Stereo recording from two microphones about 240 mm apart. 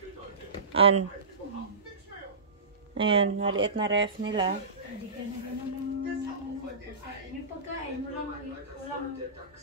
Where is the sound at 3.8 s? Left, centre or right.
Right.